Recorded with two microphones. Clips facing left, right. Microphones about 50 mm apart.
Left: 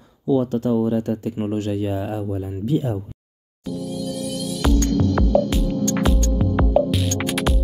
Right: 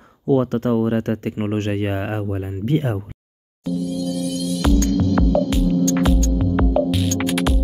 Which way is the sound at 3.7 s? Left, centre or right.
Centre.